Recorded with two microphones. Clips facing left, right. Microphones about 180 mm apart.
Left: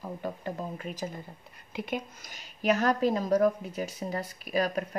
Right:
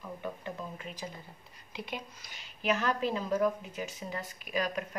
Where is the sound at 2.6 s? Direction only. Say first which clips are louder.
Left 5 dB; 40° left (ahead or behind).